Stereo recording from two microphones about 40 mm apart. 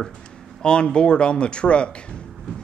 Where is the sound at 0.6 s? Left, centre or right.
Left.